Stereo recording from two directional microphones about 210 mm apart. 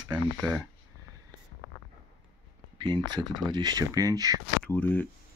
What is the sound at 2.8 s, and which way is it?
Speech, 20° right (ahead or behind).